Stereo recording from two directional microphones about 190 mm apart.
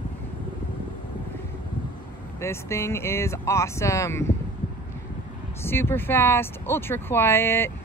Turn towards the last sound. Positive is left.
turn(degrees=10)  # may be behind; listen again after turning